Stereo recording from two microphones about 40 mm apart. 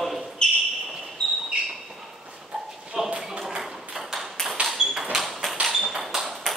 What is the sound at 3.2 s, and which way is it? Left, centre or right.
Ping, centre.